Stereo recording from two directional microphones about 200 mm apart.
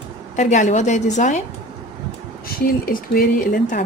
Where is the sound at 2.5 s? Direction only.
45° left (ahead or behind).